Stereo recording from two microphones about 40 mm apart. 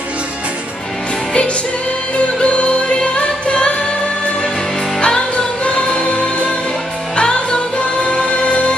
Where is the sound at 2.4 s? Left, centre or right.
Left.